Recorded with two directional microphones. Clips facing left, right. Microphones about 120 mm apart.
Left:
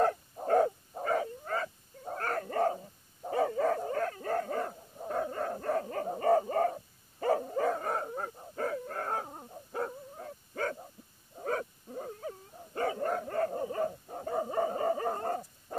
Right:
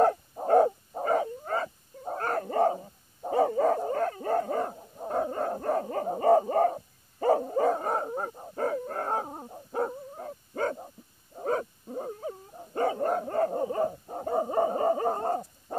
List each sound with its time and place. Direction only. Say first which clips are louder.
0.0 s owl: right 5 dB; 30° right (ahead or behind)
11.3 s dog: right 5 dB; 30° right (ahead or behind)